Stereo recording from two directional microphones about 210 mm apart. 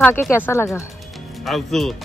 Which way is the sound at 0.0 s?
10° left (ahead or behind).